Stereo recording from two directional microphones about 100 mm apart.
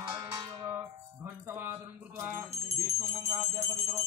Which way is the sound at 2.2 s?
30° right (ahead or behind).